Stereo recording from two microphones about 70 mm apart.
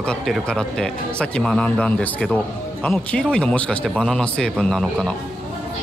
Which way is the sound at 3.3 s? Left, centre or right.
Centre.